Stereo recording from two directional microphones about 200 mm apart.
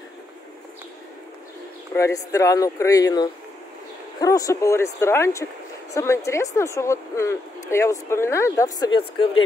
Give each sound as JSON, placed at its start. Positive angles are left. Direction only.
{"t": 2.0, "sound": "a woman's voice", "side_deg": 15}